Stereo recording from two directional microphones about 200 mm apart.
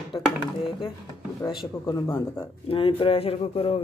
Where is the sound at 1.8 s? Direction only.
20° left (ahead or behind).